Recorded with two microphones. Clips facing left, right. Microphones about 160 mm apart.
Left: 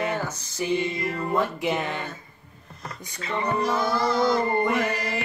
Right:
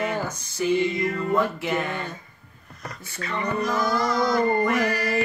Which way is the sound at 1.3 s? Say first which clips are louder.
Left 1 dB; 15° left (ahead or behind).